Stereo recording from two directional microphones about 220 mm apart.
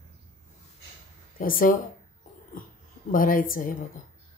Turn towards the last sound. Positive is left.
turn(degrees=40)  # may be behind; listen again after turning